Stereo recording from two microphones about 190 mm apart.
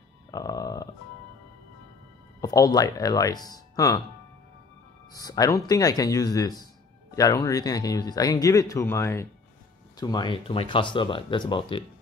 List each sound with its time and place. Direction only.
0.3 s a sound: 20° left (ahead or behind)
2.4 s speech: 20° left (ahead or behind)
5.1 s speech: 20° left (ahead or behind)